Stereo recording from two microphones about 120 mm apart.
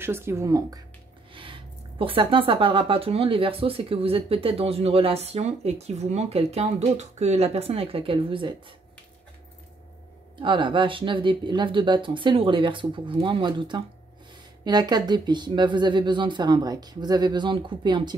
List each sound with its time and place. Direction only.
0.0 s speech: 20° right (ahead or behind)
1.3 s speech: 45° right (ahead or behind)
10.4 s speech: 40° right (ahead or behind)